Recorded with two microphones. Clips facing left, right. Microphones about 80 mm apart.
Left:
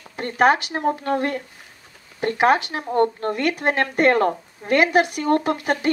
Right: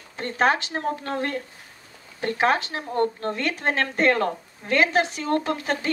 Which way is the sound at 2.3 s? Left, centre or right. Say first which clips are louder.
Left 4 dB; centre.